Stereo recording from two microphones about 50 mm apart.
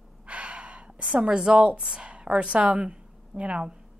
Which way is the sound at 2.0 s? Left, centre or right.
Right.